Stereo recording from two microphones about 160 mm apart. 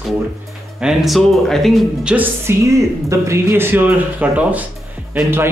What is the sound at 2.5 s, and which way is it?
Speech, 15° right (ahead or behind).